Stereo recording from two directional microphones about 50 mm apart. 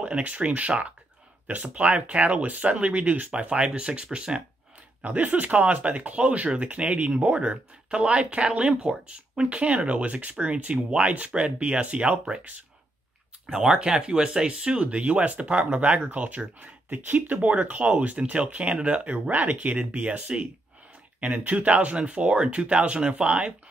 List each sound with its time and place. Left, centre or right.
0.0 s speech: right
5.0 s speech: right
13.5 s speech: centre